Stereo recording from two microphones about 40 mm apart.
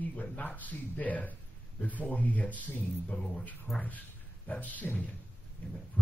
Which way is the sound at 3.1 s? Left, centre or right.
Left.